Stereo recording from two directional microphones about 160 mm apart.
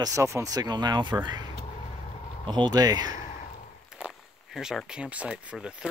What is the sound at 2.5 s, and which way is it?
Speech, 25° right (ahead or behind).